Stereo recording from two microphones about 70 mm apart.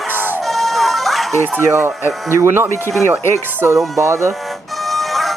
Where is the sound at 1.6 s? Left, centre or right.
Right.